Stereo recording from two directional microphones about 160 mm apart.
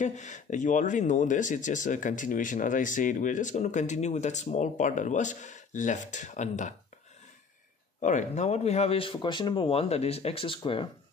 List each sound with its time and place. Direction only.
0.0 s speech: 50° left (ahead or behind)
8.0 s speech: 50° left (ahead or behind); by 10.9 s 35° left (ahead or behind)